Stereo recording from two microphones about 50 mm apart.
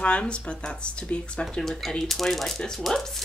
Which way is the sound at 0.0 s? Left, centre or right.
Left.